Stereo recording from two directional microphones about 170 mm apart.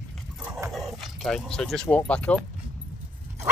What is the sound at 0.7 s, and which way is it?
Speech, centre (ahead or behind).